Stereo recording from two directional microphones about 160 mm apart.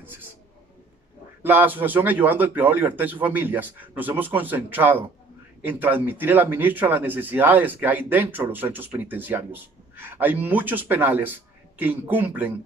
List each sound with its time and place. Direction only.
1.4 s speech: 10° right (ahead or behind)